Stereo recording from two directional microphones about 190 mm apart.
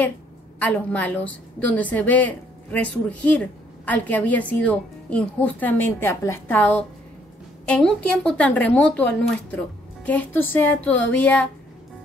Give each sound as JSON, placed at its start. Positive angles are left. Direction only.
{"t": 0.6, "sound": "a woman's voice", "side_deg": 10}